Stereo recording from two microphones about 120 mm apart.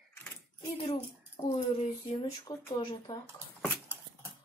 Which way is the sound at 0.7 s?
55° left (ahead or behind).